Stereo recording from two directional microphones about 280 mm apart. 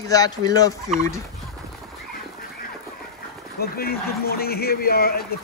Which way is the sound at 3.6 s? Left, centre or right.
Left.